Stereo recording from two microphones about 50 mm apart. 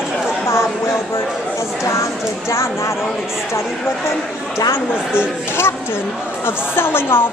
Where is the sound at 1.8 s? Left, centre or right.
Left.